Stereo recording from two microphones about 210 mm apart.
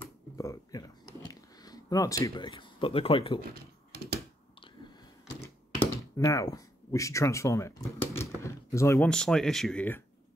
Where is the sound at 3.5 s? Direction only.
50° right (ahead or behind).